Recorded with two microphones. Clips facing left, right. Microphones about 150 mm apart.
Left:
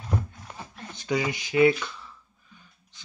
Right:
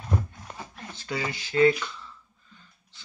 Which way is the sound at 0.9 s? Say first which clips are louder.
Left 5 dB; 15° left (ahead or behind).